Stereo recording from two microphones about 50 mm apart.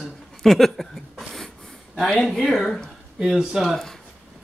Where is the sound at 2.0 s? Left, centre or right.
Centre.